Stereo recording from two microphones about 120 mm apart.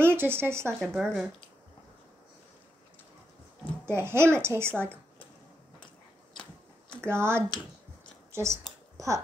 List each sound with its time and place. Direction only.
0.0 s speech: 20° right (ahead or behind)
0.7 s speech: centre (ahead or behind)
3.8 s a child's voice: 20° right (ahead or behind)
7.1 s a child's voice: 20° right (ahead or behind)
8.9 s scissors: 25° right (ahead or behind)